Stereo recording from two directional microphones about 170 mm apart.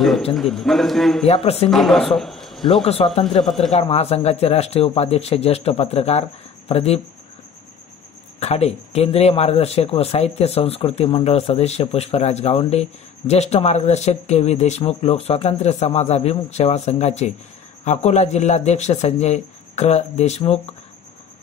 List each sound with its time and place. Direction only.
0.3 s a man's voice: centre (ahead or behind)
1.3 s speech: 35° left (ahead or behind)
1.7 s a man's voice: centre (ahead or behind)
2.6 s speech: 35° left (ahead or behind)
8.4 s speech: 40° left (ahead or behind)